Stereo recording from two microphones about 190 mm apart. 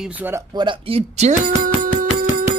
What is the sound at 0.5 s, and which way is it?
Speech, 30° right (ahead or behind).